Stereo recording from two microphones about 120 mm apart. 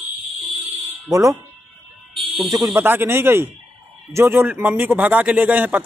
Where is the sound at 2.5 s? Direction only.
25° right (ahead or behind).